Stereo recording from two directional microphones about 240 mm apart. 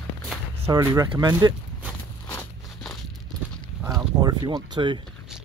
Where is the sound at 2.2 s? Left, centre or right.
Centre.